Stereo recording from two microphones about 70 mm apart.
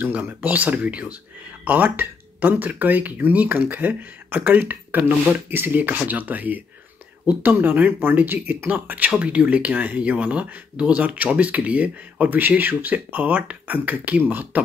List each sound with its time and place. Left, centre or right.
0.0 s speech: right